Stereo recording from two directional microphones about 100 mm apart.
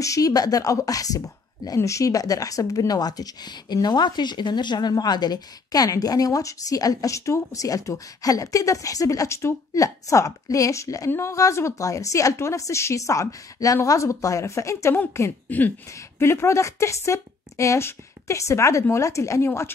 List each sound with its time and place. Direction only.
0.0 s speech: 35° left (ahead or behind)